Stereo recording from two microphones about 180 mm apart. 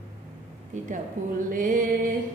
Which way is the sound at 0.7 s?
45° right (ahead or behind).